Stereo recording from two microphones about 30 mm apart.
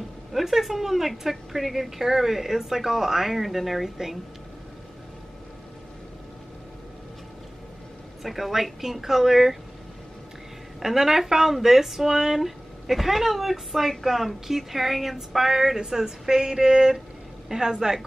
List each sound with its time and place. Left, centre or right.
0.3 s a woman's voice: centre
8.2 s a woman's voice: centre
10.8 s a woman's voice: centre